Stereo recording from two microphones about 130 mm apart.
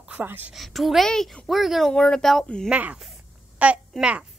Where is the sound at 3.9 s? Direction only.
10° right (ahead or behind).